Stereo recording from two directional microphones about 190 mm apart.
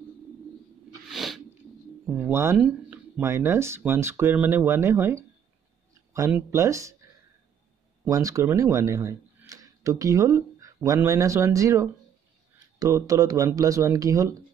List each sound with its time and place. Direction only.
1.0 s sneeze: centre (ahead or behind)
2.0 s speech: 10° right (ahead or behind)
8.0 s speech: 15° right (ahead or behind)